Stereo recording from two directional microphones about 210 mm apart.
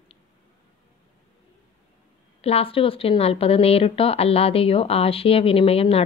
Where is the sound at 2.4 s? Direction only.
25° left (ahead or behind).